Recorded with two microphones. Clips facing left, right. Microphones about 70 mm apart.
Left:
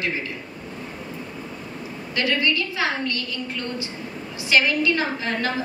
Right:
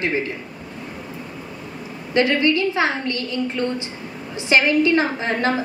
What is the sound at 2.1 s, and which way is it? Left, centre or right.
A woman's voice, right.